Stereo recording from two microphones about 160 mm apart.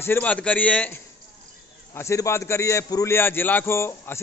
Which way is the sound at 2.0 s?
15° left (ahead or behind).